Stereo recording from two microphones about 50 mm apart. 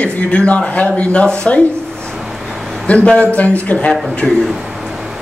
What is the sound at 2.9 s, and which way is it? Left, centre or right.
A man's voice, left.